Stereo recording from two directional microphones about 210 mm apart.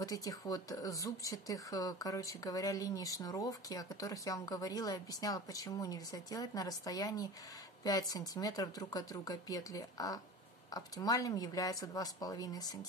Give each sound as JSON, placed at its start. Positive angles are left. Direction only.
{"t": 0.0, "sound": "speech", "side_deg": 15}